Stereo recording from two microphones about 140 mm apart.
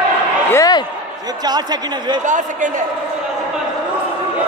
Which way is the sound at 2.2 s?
65° right (ahead or behind).